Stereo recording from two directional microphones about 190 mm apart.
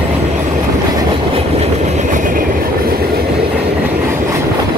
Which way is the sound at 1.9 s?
45° right (ahead or behind).